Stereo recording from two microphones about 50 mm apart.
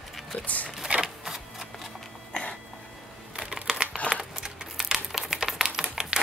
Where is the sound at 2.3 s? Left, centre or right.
Left.